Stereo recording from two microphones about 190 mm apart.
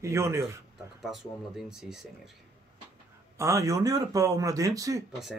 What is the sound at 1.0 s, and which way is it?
Speech, centre (ahead or behind).